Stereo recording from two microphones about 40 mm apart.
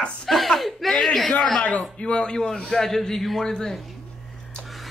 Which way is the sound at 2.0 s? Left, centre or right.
Left.